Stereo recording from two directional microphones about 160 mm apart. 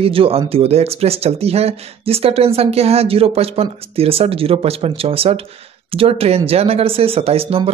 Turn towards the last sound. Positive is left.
turn(degrees=-35)  # may be behind; listen again after turning